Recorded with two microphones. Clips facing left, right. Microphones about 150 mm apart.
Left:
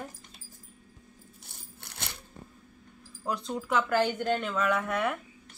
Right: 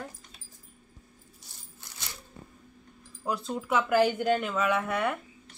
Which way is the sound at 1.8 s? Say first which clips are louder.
Left 5 dB; 65° left (ahead or behind).